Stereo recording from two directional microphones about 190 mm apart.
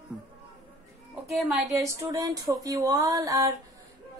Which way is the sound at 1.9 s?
20° right (ahead or behind).